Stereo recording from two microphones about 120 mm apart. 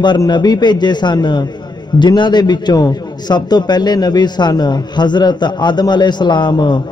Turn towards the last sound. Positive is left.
turn(degrees=40)  # may be behind; listen again after turning